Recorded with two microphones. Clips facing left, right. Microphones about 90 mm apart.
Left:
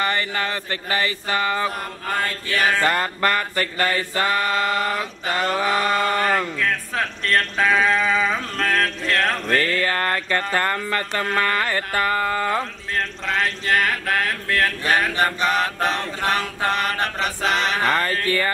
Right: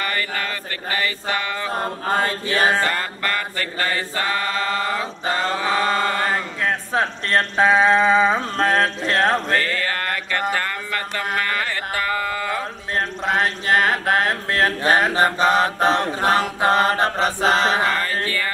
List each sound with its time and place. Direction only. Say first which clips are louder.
0.0 s mantra: left 2 dB; 30° left (ahead or behind)
1.8 s chant: right 4 dB; 25° right (ahead or behind)
3.0 s mantra: left 3 dB; 35° left (ahead or behind)
3.8 s chant: left 1 dB; 25° right (ahead or behind)
9.8 s mantra: left 2 dB; 35° left (ahead or behind)
11.3 s a sound: left 3 dB; 45° left (ahead or behind)
12.9 s chant: right 3 dB; 25° right (ahead or behind)